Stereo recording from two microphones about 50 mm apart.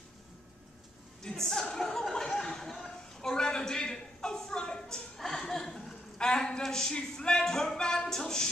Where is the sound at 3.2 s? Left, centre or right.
Centre.